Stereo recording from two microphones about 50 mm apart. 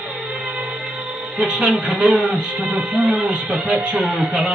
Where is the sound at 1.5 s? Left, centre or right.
Right.